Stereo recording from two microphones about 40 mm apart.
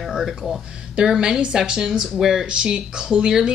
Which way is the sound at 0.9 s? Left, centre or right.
Centre.